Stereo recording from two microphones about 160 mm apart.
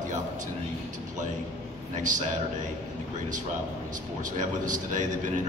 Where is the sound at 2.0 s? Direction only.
50° right (ahead or behind).